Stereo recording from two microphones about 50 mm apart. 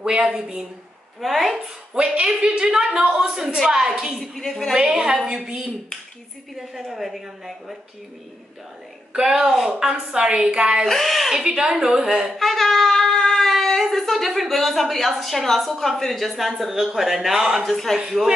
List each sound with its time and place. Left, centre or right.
0.0 s a woman's voice: centre
1.2 s speech: centre
2.2 s a woman's voice: right
4.2 s a woman's voice: centre
4.7 s a woman's voice: centre
6.7 s speech: centre
9.2 s a woman's voice: centre
10.9 s speech: centre
11.3 s a woman's voice: centre
12.4 s speech: centre
17.6 s speech: centre